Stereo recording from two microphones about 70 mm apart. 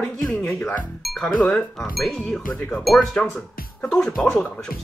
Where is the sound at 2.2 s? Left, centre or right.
Centre.